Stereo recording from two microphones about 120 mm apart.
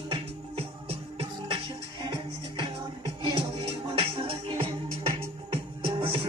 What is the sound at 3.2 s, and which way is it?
Music, 50° right (ahead or behind).